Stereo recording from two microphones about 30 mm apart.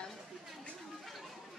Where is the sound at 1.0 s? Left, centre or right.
Centre.